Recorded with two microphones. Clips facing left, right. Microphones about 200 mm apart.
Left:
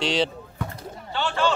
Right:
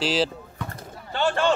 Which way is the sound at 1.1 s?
50° right (ahead or behind).